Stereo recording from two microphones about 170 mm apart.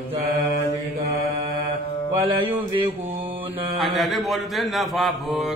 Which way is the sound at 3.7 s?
Centre (ahead or behind).